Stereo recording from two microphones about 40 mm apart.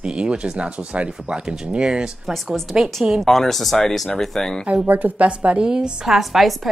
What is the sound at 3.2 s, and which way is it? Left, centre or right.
A woman's voice, centre.